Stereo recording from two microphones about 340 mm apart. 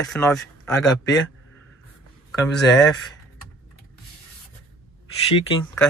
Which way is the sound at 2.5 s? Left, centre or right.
Centre.